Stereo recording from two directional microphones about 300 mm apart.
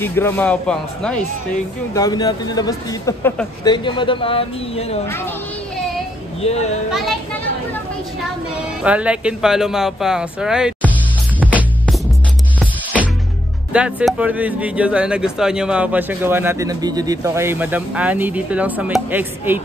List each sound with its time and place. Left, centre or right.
0.0 s speech: centre
6.4 s a child's voice: centre
6.9 s speech: centre
8.8 s speech: centre
11.3 s music: centre
13.7 s speech: centre